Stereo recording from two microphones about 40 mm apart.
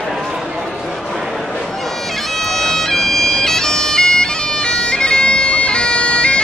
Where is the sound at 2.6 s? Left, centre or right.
Centre.